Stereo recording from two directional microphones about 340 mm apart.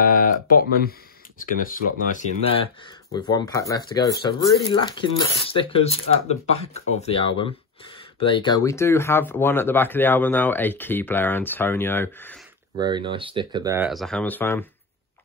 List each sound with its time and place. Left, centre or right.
0.5 s speech: left; by 12.4 s centre
12.7 s speech: centre